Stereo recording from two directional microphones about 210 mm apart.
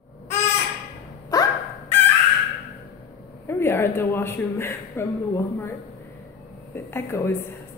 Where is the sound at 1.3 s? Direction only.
15° left (ahead or behind).